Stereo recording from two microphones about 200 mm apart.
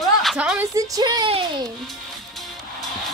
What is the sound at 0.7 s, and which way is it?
Speech, 20° right (ahead or behind).